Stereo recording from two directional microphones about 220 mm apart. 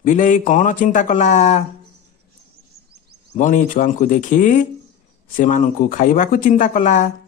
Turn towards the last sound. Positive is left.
turn(degrees=35)  # may be behind; listen again after turning